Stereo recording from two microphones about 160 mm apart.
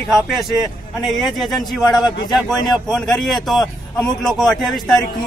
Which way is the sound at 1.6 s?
25° left (ahead or behind).